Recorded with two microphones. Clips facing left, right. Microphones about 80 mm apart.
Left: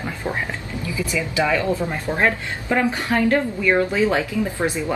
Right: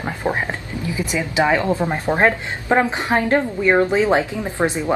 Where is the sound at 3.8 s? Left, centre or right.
Right.